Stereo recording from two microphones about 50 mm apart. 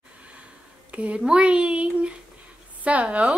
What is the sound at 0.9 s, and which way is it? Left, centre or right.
A woman's voice, right.